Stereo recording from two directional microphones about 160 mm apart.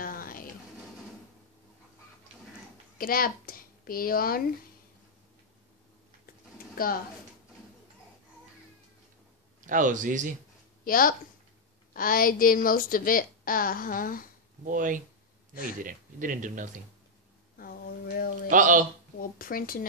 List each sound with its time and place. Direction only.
0.0 s music: 65° left (ahead or behind)
3.0 s speech: 65° left (ahead or behind)
6.7 s pigeon: 65° left (ahead or behind)
9.7 s speech: 55° right (ahead or behind)
10.8 s a woman's voice: 65° left (ahead or behind)
14.6 s speech: 55° right (ahead or behind)
17.6 s a sound: 65° left (ahead or behind)
18.5 s speech: 55° right (ahead or behind)
19.1 s speech: 65° left (ahead or behind)